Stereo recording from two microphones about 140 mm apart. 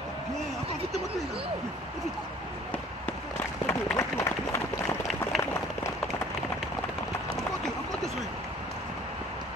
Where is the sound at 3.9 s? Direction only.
20° left (ahead or behind).